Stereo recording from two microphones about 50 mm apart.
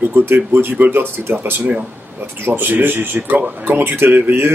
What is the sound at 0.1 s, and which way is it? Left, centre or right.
Speech, right.